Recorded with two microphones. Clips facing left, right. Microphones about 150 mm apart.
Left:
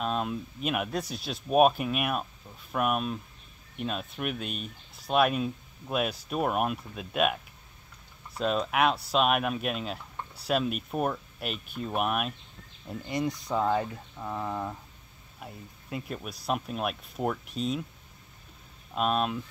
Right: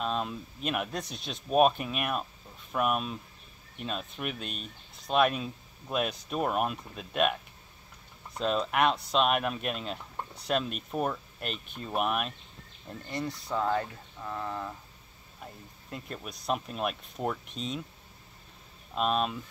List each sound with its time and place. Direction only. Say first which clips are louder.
0.0 s speech: left 2 dB; 5° left (ahead or behind)
8.4 s speech: left 1 dB; 5° left (ahead or behind)
15.4 s speech: left 2 dB; 5° left (ahead or behind)
18.9 s speech: left 1 dB; centre (ahead or behind)